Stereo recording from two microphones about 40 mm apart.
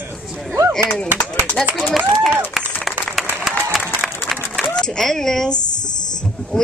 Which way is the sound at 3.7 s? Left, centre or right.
Centre.